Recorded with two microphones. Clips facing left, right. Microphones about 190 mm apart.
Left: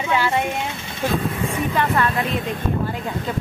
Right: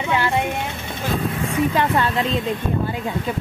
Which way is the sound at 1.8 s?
25° right (ahead or behind).